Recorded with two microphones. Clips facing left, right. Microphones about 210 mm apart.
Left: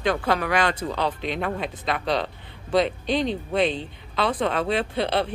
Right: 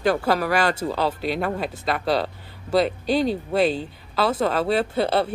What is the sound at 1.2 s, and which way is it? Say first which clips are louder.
Speech: right 3 dB; 5° right (ahead or behind).